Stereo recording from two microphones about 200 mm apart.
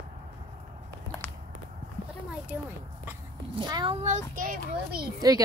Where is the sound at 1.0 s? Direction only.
5° left (ahead or behind).